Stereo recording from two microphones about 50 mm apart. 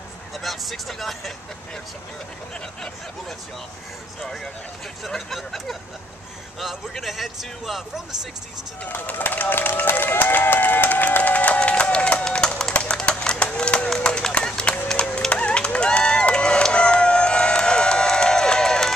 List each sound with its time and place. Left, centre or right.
0.4 s speech: centre
5.0 s speech: centre
8.8 s run: left; by 18.9 s centre